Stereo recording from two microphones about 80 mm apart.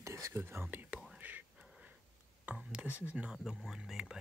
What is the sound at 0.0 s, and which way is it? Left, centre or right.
Whispering, right.